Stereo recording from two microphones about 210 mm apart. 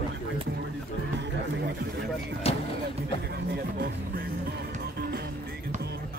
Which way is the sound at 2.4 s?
30° left (ahead or behind).